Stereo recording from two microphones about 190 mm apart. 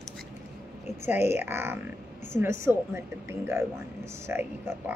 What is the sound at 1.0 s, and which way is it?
Speech, 10° right (ahead or behind).